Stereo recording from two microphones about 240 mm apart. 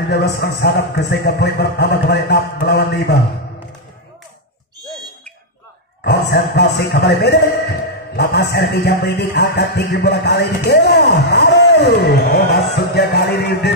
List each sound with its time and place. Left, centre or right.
0.1 s speech: left
6.0 s speech: left
8.2 s music: left